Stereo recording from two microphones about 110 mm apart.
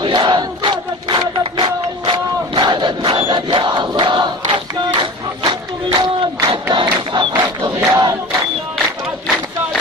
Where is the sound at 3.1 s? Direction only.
50° right (ahead or behind).